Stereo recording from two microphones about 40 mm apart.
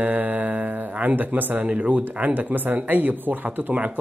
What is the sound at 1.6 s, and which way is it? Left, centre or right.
Speech, right.